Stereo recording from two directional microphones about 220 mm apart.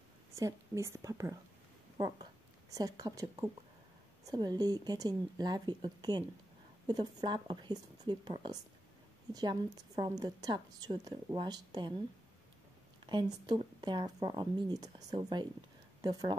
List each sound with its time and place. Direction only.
0.3 s a woman's voice: 15° right (ahead or behind)
2.7 s a woman's voice: 15° right (ahead or behind)
13.0 s a woman's voice: 20° right (ahead or behind)